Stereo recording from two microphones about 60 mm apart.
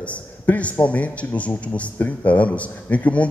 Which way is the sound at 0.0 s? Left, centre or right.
Left.